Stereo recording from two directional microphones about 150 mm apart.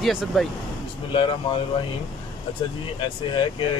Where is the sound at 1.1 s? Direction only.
30° left (ahead or behind).